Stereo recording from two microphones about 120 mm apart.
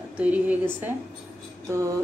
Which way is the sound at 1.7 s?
25° right (ahead or behind).